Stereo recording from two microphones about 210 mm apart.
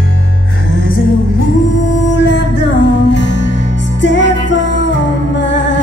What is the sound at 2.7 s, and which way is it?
Music, 60° left (ahead or behind).